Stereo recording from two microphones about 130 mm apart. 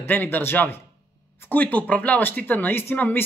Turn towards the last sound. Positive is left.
turn(degrees=15)  # may be behind; listen again after turning